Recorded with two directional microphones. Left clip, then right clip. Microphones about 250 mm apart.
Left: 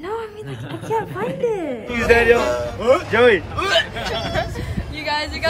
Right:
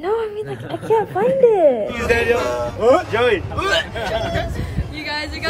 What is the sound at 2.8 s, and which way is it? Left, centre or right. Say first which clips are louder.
Speech: right 3 dB; right.